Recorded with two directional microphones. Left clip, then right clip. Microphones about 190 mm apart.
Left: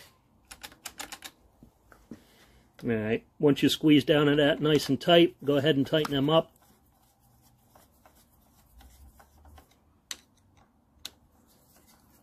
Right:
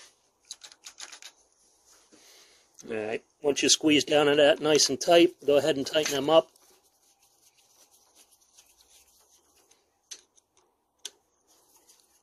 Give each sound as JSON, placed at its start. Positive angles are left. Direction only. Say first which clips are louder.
{"t": 3.0, "sound": "speech", "louder": "left 4 dB", "side_deg": -45}